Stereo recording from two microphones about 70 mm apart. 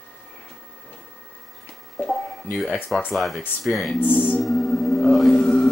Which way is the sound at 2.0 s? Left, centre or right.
Centre.